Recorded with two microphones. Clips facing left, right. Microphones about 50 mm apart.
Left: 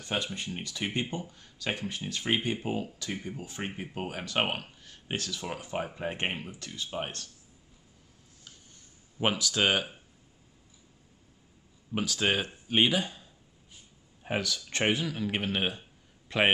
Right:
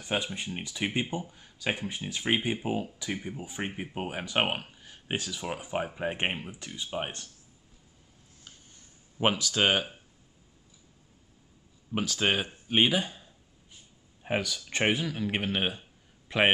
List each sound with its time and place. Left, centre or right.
0.0 s speech: centre
9.2 s speech: centre
11.9 s speech: centre